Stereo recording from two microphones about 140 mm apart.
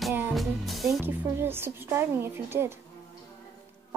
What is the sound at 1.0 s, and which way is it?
A woman's voice, 15° right (ahead or behind).